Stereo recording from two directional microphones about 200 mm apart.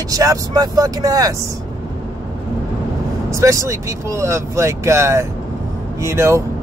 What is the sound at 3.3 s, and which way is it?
Speech, 15° right (ahead or behind).